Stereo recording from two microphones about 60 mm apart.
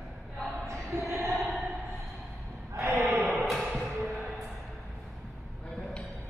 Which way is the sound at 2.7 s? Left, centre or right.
Right.